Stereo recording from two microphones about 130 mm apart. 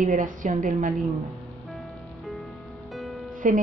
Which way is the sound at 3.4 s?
90° right.